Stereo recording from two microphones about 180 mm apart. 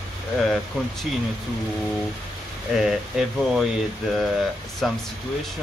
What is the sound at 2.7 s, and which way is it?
Speech, 5° right (ahead or behind).